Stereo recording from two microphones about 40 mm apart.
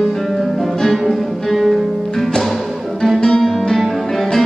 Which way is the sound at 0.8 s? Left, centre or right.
Centre.